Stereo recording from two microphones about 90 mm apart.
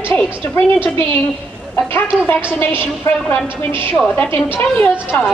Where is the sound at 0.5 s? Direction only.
25° left (ahead or behind).